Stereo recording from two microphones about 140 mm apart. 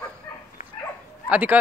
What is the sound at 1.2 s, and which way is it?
Speech, 15° right (ahead or behind).